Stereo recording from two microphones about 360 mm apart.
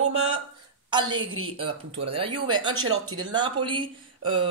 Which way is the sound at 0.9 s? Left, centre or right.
Centre.